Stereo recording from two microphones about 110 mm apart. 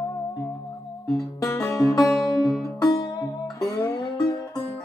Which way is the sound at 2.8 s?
40° left (ahead or behind).